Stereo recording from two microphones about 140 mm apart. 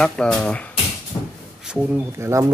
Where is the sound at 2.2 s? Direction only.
20° right (ahead or behind).